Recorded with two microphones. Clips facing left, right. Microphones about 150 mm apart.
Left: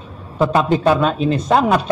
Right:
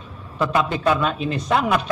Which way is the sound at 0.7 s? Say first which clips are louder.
Left 5 dB; 30° left (ahead or behind).